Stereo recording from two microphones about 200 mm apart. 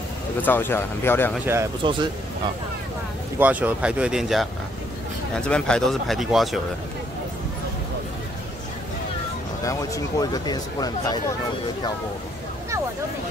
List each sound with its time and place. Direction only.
0.4 s speech: 10° left (ahead or behind)
1.3 s speech: 10° right (ahead or behind)
1.8 s speech: 25° right (ahead or behind)
3.3 s speech: 5° right (ahead or behind)
9.7 s speech: 15° left (ahead or behind)